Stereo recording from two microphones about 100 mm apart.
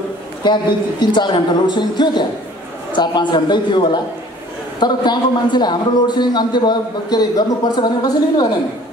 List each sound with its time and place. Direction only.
0.4 s a man's voice: 50° left (ahead or behind)